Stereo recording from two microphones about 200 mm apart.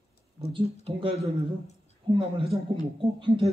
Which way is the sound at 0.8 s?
30° right (ahead or behind).